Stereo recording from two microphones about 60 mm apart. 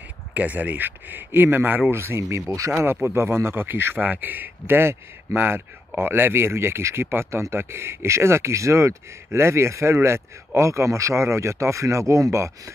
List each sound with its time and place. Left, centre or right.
0.3 s speech: right
1.9 s speech: right
2.8 s speech: right